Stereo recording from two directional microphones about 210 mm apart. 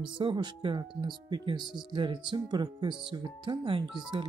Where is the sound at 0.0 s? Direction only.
20° right (ahead or behind).